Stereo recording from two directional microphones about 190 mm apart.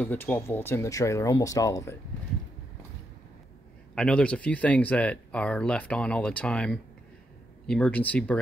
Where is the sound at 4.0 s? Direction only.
5° left (ahead or behind).